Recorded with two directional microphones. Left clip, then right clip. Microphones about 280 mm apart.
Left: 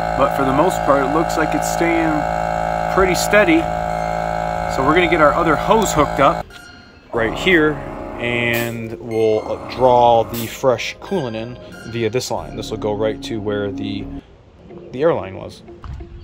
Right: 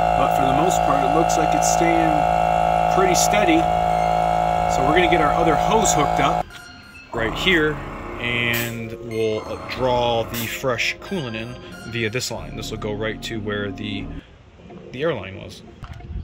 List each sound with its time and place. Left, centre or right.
0.0 s speech: right
7.2 s speech: centre